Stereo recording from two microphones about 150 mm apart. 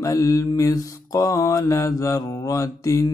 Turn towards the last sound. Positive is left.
turn(degrees=20)  # may be behind; listen again after turning